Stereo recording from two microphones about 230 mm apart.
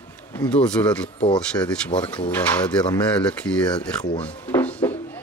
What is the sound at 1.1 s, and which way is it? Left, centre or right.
Speech, left.